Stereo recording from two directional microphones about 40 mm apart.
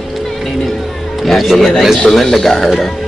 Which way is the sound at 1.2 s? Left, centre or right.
Centre.